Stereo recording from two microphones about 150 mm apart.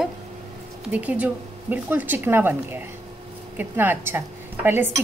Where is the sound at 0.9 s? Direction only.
10° right (ahead or behind).